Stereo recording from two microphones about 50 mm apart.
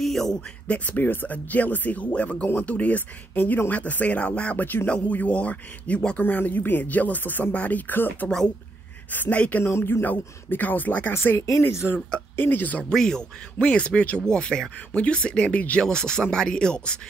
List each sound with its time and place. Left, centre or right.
0.0 s a sound: centre
0.7 s speech: left
3.3 s speech: left
3.7 s a man's voice: left
9.7 s speech: left
10.0 s speech: left
12.4 s speech: left
12.9 s speech: centre
13.6 s a man's voice: left
15.8 s speech: centre